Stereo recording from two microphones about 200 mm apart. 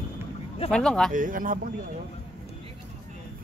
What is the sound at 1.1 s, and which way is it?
Speech, 45° right (ahead or behind).